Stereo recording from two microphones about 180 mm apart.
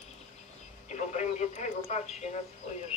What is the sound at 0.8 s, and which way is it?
Speech, 40° left (ahead or behind).